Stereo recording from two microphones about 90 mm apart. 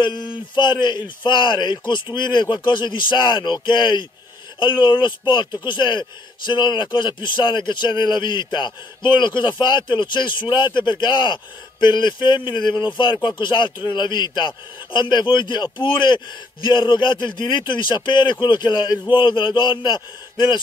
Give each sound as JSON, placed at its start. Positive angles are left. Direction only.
{"t": 0.0, "sound": "speech", "side_deg": 55}